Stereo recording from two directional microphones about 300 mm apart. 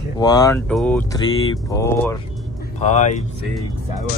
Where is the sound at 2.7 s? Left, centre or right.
Left.